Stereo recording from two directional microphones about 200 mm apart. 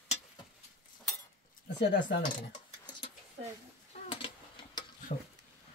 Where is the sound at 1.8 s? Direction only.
55° left (ahead or behind).